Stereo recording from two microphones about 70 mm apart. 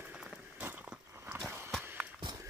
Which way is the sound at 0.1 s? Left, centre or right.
Centre.